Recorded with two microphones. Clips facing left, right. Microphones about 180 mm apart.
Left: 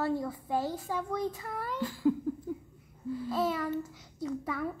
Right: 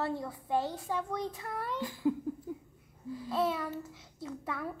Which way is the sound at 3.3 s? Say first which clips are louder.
Left 1 dB; centre (ahead or behind).